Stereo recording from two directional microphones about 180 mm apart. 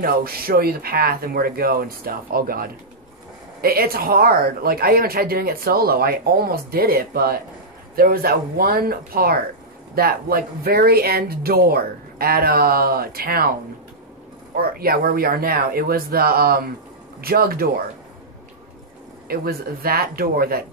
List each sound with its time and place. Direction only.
0.0 s speech: 55° right (ahead or behind)
14.5 s speech: 55° right (ahead or behind)
19.2 s speech: 55° right (ahead or behind)